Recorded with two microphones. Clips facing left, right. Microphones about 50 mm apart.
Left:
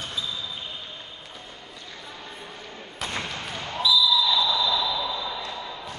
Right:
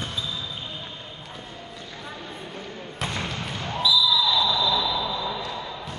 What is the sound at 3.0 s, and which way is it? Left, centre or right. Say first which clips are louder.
Basketball bounce: right 1 dB; centre.